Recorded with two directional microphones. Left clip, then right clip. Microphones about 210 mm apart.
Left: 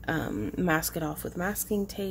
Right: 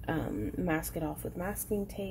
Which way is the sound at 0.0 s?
15° left (ahead or behind).